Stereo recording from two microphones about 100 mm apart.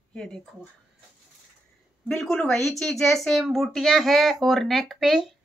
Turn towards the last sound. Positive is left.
turn(degrees=0)  # may be behind; listen again after turning